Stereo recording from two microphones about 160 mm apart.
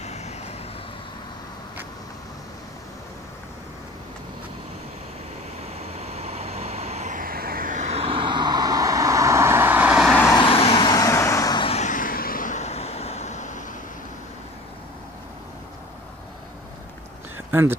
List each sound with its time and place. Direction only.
0.0 s vehicle: 45° left (ahead or behind)
5.8 s vehicle: 40° right (ahead or behind); by 10.1 s 5° right (ahead or behind)
10.3 s vehicle: 35° left (ahead or behind)
11.6 s vehicle: 45° left (ahead or behind)
17.5 s speech: 10° right (ahead or behind)